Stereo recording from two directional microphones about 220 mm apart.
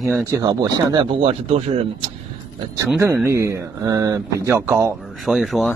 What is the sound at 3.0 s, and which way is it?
A man's voice, 10° right (ahead or behind).